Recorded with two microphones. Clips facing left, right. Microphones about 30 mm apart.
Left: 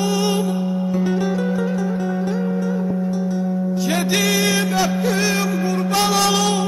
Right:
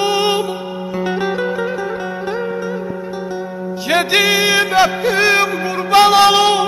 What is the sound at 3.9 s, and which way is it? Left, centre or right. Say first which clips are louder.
Music: right 7 dB; right.